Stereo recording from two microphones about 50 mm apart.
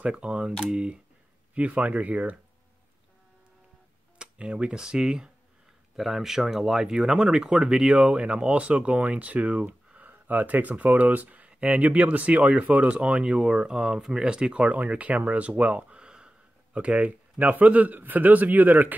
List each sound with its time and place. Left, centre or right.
0.0 s speech: centre
4.2 s speech: right
5.9 s speech: centre; by 18.9 s right